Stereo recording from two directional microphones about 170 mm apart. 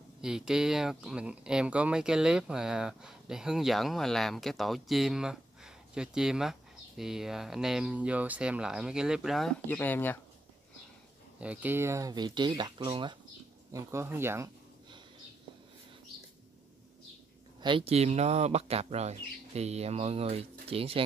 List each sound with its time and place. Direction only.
0.2 s speech: 5° right (ahead or behind)
9.7 s speech: 10° left (ahead or behind)
11.3 s speech: 10° right (ahead or behind); by 13.2 s 30° right (ahead or behind)
13.7 s speech: 15° right (ahead or behind)
17.6 s speech: 30° right (ahead or behind)